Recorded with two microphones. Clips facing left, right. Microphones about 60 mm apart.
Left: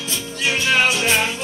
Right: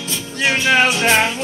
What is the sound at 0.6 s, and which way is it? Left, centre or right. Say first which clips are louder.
Music: right 3 dB; right.